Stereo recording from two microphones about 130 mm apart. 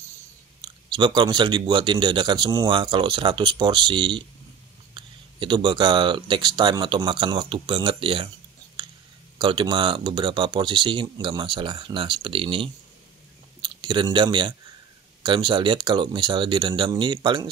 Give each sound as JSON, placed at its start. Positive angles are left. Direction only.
{"t": 0.6, "sound": "speech", "side_deg": -35}
{"t": 9.4, "sound": "speech", "side_deg": -40}
{"t": 13.6, "sound": "a sound", "side_deg": -35}
{"t": 14.1, "sound": "speech", "side_deg": -40}